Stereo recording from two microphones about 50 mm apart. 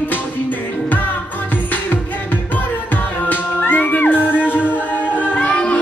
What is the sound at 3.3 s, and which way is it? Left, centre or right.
Music, left.